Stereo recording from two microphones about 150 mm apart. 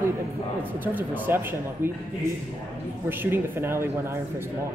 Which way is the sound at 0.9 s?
15° right (ahead or behind).